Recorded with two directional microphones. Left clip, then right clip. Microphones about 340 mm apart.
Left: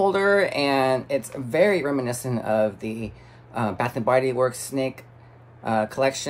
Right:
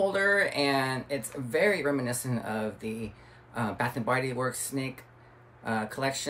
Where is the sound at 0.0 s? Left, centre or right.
Left.